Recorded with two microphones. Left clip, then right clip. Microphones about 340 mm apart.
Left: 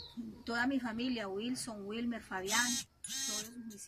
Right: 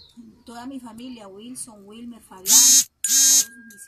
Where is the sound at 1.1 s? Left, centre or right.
Centre.